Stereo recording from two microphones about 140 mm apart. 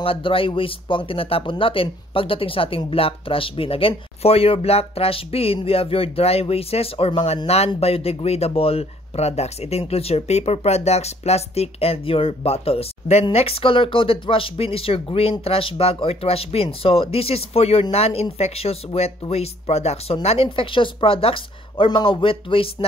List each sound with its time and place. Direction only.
0.0 s speech: 40° left (ahead or behind)